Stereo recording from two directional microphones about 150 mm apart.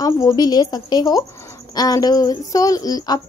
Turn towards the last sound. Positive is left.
turn(degrees=25)  # may be behind; listen again after turning